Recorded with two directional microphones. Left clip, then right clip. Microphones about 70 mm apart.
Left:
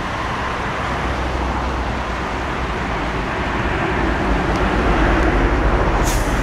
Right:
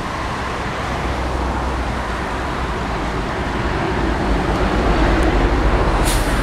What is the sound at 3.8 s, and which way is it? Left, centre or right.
Vehicle, left.